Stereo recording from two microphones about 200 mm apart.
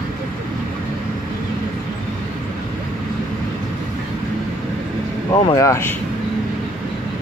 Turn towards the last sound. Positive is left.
turn(degrees=10)  # may be behind; listen again after turning